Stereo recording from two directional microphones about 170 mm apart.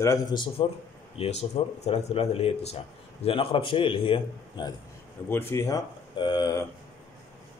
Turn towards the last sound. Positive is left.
turn(degrees=20)  # may be behind; listen again after turning